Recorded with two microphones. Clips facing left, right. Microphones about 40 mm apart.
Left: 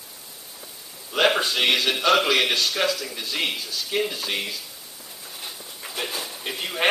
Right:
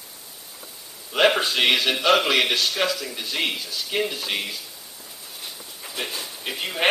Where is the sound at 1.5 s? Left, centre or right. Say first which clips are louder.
Right 1 dB; centre.